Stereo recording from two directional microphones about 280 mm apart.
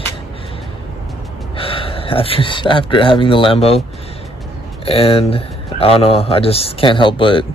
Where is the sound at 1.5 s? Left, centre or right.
Centre.